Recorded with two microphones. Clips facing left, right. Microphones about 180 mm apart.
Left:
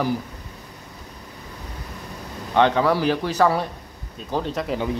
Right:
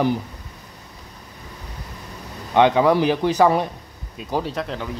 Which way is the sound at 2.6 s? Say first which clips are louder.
Right 3 dB; 15° right (ahead or behind).